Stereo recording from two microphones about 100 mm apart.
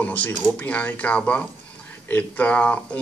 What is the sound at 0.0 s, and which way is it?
A man's voice, 15° left (ahead or behind).